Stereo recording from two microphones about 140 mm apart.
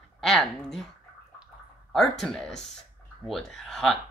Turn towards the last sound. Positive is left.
turn(degrees=5)  # may be behind; listen again after turning